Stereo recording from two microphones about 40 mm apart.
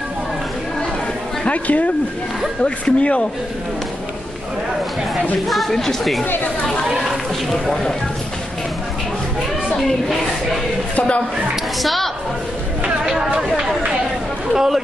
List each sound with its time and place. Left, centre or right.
1.5 s speech: left
2.6 s speech: left
5.5 s speech: centre
9.8 s speech: centre
11.8 s a woman's voice: centre
14.5 s speech: centre